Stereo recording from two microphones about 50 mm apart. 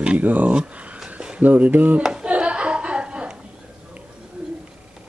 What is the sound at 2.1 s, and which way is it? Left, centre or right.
Hands, right.